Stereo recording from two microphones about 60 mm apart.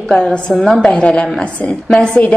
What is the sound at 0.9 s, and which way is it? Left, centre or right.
Speech, centre.